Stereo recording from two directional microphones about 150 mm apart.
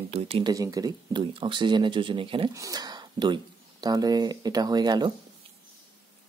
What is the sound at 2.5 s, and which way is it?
Speech, 25° right (ahead or behind).